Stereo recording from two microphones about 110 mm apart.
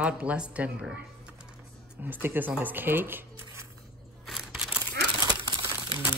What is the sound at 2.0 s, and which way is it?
A woman's voice, 20° right (ahead or behind).